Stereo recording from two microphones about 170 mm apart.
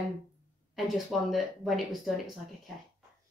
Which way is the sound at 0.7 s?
Centre (ahead or behind).